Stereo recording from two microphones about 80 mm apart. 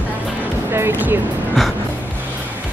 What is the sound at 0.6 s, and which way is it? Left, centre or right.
Music, right.